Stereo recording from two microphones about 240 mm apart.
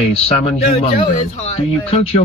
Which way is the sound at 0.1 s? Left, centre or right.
Left.